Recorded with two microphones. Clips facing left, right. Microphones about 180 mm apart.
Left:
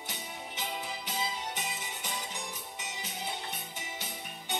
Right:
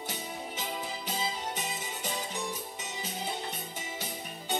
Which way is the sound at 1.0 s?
35° right (ahead or behind).